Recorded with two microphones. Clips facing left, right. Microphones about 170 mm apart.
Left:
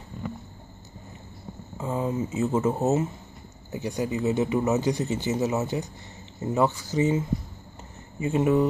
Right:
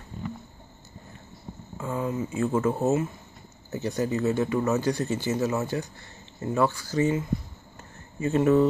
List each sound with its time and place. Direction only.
1.8 s speech: 20° left (ahead or behind)